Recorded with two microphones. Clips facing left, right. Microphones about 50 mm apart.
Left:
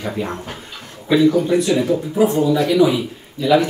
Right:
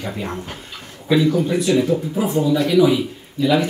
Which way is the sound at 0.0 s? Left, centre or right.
Centre.